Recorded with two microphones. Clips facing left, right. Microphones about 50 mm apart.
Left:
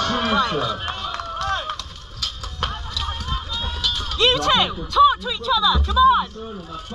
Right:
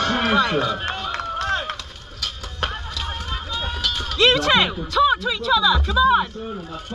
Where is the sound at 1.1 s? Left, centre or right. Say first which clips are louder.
Right 1 dB; right.